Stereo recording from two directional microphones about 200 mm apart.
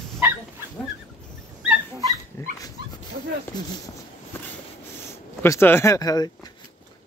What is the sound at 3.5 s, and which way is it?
Speech, 20° left (ahead or behind).